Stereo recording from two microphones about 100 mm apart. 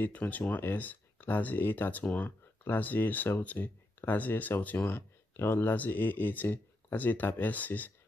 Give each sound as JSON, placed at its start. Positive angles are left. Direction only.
{"t": 0.0, "sound": "speech", "side_deg": 15}